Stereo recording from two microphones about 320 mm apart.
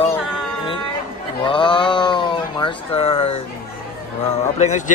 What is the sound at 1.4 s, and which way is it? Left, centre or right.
Speech, centre.